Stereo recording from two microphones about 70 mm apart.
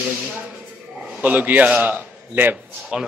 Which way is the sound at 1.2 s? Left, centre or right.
Right.